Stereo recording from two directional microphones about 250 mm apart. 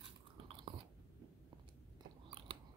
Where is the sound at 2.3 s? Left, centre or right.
Right.